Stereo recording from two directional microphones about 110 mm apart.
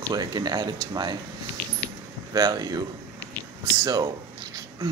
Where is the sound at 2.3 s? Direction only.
35° right (ahead or behind).